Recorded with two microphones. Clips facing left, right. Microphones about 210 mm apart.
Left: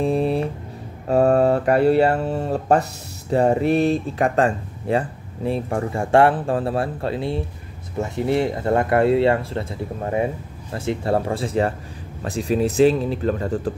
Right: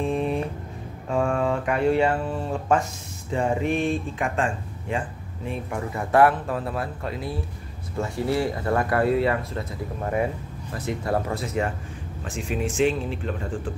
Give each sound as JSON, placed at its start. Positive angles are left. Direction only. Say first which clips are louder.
{"t": 0.0, "sound": "music", "louder": "left 5 dB", "side_deg": 35}
{"t": 1.0, "sound": "mantra", "louder": "left 8 dB", "side_deg": 40}
{"t": 3.3, "sound": "speech", "louder": "left 6 dB", "side_deg": 35}
{"t": 10.7, "sound": "speech", "louder": "left 4 dB", "side_deg": 30}